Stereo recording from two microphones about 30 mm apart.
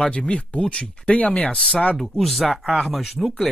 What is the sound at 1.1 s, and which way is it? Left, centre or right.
Speech, left.